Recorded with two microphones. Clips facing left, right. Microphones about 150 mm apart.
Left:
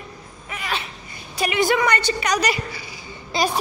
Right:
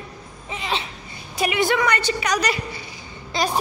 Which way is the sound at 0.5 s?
25° right (ahead or behind).